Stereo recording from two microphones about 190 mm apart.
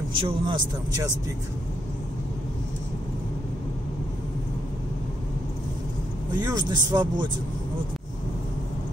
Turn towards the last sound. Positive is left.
turn(degrees=-25)  # may be behind; listen again after turning